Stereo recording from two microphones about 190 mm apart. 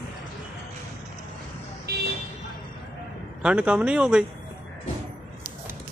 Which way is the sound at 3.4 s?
5° right (ahead or behind).